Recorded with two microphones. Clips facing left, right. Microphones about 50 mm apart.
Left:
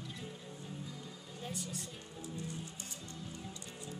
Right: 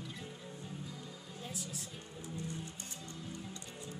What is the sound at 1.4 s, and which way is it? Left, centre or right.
Speech, centre.